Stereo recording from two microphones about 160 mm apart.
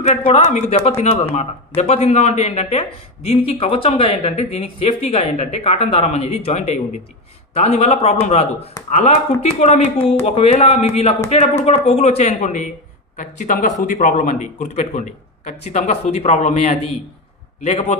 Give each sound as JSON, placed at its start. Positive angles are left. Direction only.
{"t": 0.0, "sound": "a man's voice", "side_deg": 40}